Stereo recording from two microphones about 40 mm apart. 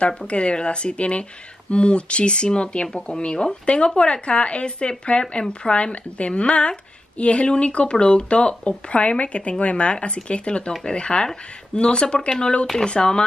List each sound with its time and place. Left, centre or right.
0.3 s speech: left